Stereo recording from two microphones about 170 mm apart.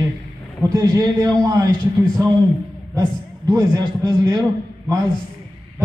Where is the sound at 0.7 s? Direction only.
20° right (ahead or behind).